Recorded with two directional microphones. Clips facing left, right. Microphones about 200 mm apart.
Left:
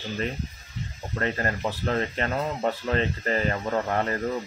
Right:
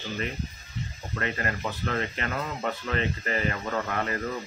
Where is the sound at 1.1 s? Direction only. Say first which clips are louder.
Left 3 dB; 35° left (ahead or behind).